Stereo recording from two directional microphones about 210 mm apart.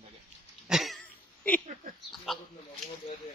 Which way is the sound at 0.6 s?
Centre (ahead or behind).